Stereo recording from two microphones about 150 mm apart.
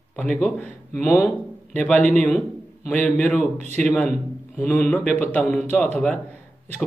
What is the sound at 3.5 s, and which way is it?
Speech, 50° right (ahead or behind).